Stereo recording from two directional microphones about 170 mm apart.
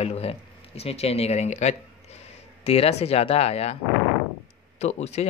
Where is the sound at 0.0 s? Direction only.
35° left (ahead or behind).